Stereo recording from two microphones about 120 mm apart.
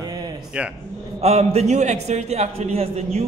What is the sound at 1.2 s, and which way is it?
A man's voice, 60° right (ahead or behind).